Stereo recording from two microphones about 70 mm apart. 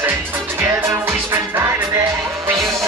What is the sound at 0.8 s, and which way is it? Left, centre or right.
Music, right.